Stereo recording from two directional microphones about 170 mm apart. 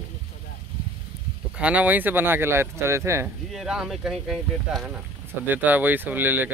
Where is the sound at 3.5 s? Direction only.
5° right (ahead or behind).